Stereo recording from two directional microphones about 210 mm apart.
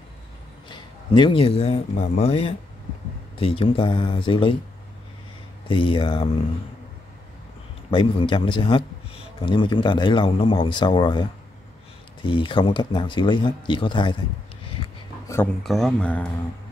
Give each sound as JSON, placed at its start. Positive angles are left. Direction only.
{"t": 0.7, "sound": "a man's voice", "side_deg": 20}
{"t": 5.7, "sound": "a man's voice", "side_deg": 25}
{"t": 7.9, "sound": "a man's voice", "side_deg": 25}
{"t": 14.8, "sound": "a sound", "side_deg": 25}
{"t": 15.2, "sound": "a sound", "side_deg": 10}
{"t": 15.6, "sound": "speech", "side_deg": 0}